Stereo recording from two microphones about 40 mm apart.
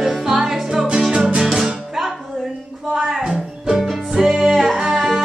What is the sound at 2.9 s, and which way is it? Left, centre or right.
Music, centre.